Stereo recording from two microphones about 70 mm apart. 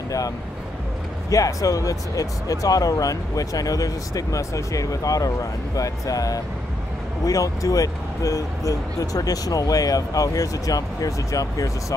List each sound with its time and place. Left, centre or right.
1.3 s speech: left